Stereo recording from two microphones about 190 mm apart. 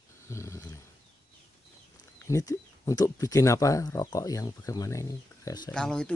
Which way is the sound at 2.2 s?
15° left (ahead or behind).